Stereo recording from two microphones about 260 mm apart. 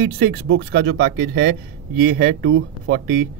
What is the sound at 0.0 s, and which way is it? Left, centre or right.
Speech, right.